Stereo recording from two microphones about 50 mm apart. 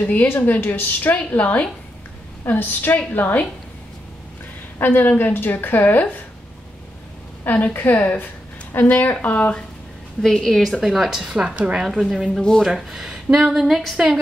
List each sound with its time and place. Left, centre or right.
0.0 s a woman's voice: left
1.1 s a woman's voice: left
2.4 s a woman's voice: left
4.7 s a woman's voice: left
7.4 s a woman's voice: left
10.2 s a woman's voice: centre
10.6 s speech: centre
11.3 s speech: right
11.8 s speech: centre
12.4 s a woman's voice: centre
12.6 s speech: centre